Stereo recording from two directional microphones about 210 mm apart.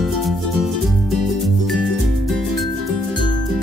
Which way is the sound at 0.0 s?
Centre (ahead or behind).